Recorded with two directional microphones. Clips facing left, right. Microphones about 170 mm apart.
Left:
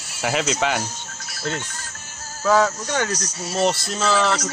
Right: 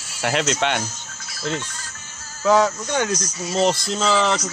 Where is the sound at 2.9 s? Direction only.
15° right (ahead or behind).